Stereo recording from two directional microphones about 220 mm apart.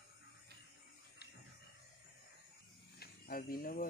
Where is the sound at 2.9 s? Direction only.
45° left (ahead or behind).